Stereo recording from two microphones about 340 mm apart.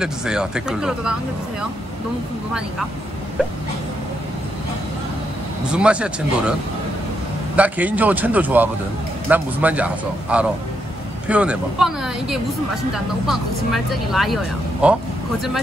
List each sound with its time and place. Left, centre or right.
0.0 s speech: centre
5.7 s speech: centre
7.5 s speech: centre